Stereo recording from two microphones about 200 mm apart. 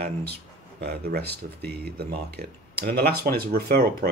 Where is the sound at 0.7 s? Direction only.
50° right (ahead or behind).